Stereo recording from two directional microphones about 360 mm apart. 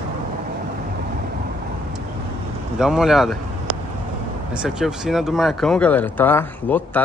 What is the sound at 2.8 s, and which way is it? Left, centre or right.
Speech, centre.